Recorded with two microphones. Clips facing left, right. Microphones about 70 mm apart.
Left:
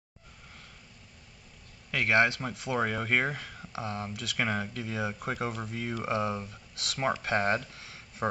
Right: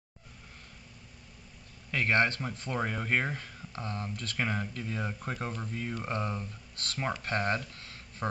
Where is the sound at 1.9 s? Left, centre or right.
Centre.